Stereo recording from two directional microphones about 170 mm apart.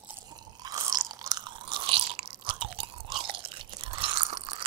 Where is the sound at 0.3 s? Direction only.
25° right (ahead or behind).